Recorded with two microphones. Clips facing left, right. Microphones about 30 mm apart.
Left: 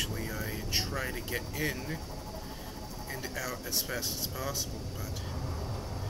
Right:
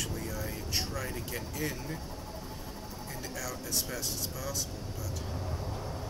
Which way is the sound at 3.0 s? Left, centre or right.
Centre.